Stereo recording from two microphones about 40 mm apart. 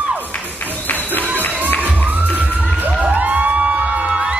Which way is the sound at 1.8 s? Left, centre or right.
Right.